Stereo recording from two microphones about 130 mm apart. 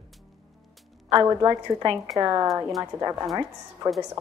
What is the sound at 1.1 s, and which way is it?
A woman's voice, 30° right (ahead or behind).